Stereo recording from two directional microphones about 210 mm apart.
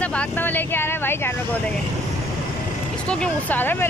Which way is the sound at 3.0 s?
5° left (ahead or behind).